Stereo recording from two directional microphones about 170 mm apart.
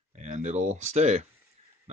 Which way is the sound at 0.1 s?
40° right (ahead or behind).